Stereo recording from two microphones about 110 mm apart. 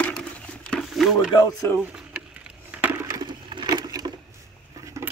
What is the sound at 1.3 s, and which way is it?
Speech, 35° left (ahead or behind).